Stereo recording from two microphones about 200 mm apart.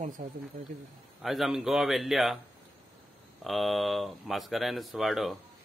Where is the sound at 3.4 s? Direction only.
Centre (ahead or behind).